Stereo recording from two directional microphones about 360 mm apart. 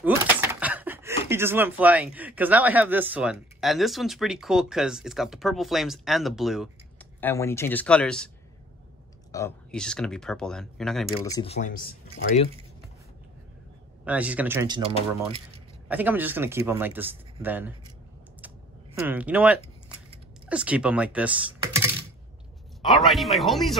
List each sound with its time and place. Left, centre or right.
0.0 s speech: centre
9.3 s speech: centre
11.1 s speech: centre
14.0 s speech: centre
18.9 s speech: centre